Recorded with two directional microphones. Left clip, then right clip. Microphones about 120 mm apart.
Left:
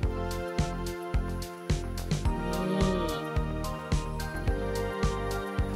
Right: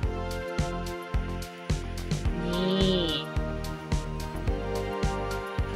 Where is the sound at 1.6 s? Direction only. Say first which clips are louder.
Even; centre (ahead or behind).